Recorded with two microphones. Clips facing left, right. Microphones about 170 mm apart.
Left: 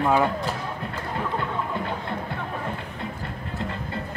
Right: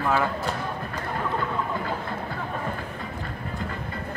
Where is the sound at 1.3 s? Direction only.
25° left (ahead or behind).